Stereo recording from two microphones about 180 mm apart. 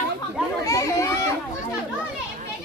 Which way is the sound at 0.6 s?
15° left (ahead or behind).